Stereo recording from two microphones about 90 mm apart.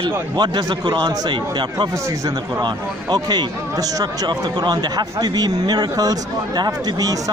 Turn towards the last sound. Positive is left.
turn(degrees=-45)  # may be behind; listen again after turning